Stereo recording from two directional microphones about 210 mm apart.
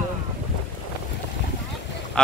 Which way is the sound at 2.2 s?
5° left (ahead or behind).